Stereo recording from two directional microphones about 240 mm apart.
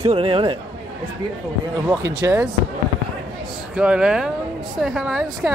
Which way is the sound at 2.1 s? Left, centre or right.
Centre.